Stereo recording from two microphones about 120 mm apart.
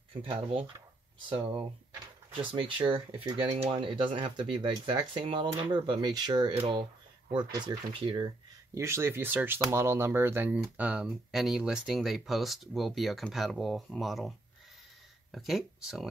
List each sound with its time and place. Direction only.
0.1 s speech: 45° right (ahead or behind)
8.7 s speech: 20° right (ahead or behind)
11.1 s speech: centre (ahead or behind)
15.3 s speech: centre (ahead or behind)